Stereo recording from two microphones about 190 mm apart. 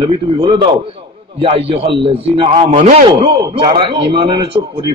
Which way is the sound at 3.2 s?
25° right (ahead or behind).